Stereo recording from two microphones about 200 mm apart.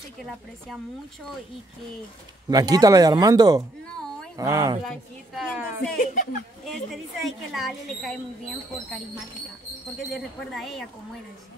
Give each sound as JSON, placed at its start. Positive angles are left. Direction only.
{"t": 2.5, "sound": "speech", "side_deg": -20}
{"t": 4.8, "sound": "a woman's voice", "side_deg": 0}
{"t": 5.9, "sound": "a woman's voice", "side_deg": 35}
{"t": 6.6, "sound": "a woman's voice", "side_deg": 0}
{"t": 10.1, "sound": "a woman's voice", "side_deg": 0}